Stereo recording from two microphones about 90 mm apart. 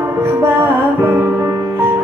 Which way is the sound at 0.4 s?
25° right (ahead or behind).